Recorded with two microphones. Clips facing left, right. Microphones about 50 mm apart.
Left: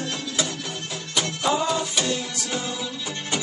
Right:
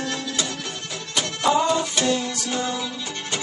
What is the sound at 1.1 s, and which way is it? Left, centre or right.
Music, centre.